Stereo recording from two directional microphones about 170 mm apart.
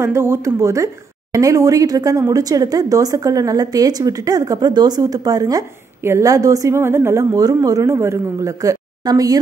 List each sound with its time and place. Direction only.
0.0 s speech: 15° right (ahead or behind)